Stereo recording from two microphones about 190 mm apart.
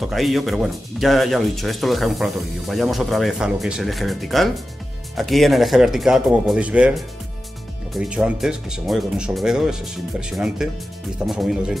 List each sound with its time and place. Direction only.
0.0 s a man's voice: centre (ahead or behind)